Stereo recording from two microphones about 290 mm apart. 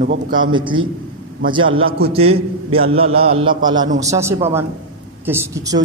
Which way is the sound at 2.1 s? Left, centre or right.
Centre.